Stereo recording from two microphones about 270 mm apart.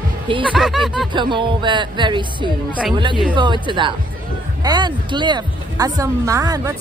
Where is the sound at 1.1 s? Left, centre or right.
Centre.